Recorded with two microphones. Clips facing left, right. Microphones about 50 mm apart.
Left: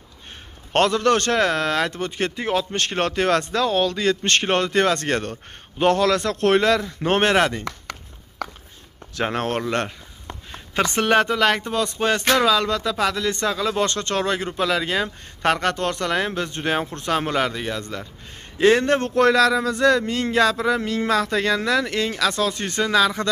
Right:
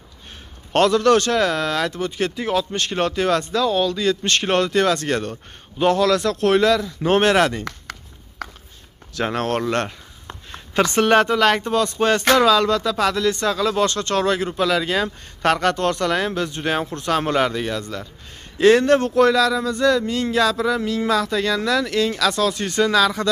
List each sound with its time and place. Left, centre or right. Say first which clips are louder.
0.7 s speech: right 3 dB; left
2.7 s speech: right 1 dB; left
4.4 s speech: right 1 dB; left
4.9 s speech: right 1 dB; left
7.2 s speech: right 1 dB; centre
9.2 s speech: right 2 dB; centre
11.0 s speech: right 2 dB; centre
13.7 s speech: right 2 dB; left
14.4 s speech: right 2 dB; centre
18.6 s speech: right 3 dB; left
19.0 s speech: right 1 dB; left
21.5 s speech: right 2 dB; left
22.5 s speech: right 2 dB; left
22.8 s speech: even; centre